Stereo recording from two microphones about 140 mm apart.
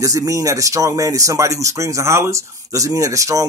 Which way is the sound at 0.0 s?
25° right (ahead or behind).